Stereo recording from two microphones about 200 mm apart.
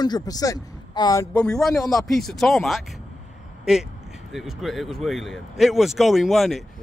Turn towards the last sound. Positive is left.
turn(degrees=0)  # may be behind; listen again after turning